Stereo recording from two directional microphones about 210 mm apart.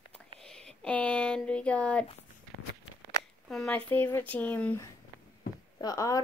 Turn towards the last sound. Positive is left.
turn(degrees=15)  # may be behind; listen again after turning